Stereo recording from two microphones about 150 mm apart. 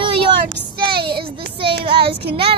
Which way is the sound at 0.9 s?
90° right.